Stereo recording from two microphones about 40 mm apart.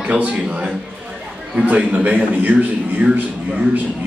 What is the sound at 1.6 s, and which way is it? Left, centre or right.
Speech, right.